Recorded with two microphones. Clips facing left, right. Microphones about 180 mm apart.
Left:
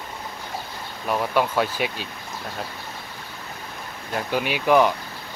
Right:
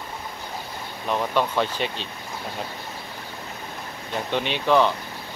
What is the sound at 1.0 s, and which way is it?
Speech, 10° left (ahead or behind).